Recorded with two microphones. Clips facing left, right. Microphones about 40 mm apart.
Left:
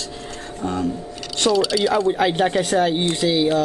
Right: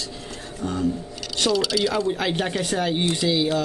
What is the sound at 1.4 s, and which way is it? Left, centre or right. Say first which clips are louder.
Speech: left 3 dB; centre.